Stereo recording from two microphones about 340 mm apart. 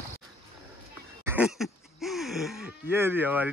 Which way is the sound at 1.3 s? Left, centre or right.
Centre.